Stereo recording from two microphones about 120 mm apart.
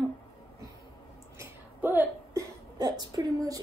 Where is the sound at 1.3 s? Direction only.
15° right (ahead or behind).